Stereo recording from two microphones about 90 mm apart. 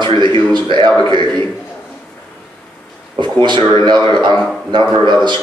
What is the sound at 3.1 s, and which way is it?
A man's voice, 60° right (ahead or behind).